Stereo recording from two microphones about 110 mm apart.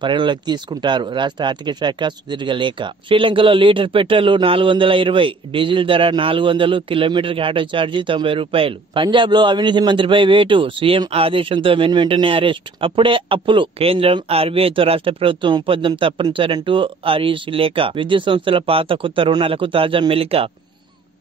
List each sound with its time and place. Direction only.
0.0 s speech: 45° right (ahead or behind)